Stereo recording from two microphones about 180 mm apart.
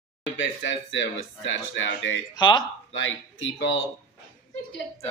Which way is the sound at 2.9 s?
90° left.